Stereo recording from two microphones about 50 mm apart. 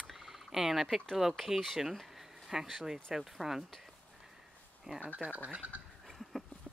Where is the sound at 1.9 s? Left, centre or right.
Centre.